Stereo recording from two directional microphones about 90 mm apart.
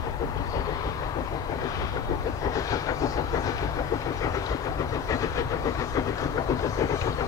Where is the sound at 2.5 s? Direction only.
40° left (ahead or behind).